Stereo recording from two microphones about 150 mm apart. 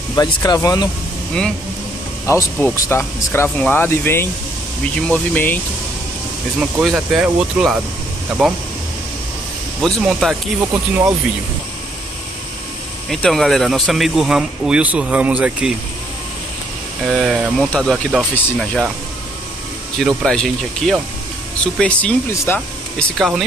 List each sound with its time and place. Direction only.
0.1 s speech: 25° left (ahead or behind)
2.2 s speech: 20° left (ahead or behind)
6.6 s speech: 5° right (ahead or behind)
10.0 s speech: 5° right (ahead or behind)
13.1 s speech: centre (ahead or behind)
17.0 s speech: centre (ahead or behind)
20.0 s speech: centre (ahead or behind)
22.3 s speech: 20° left (ahead or behind)
22.9 s speech: centre (ahead or behind)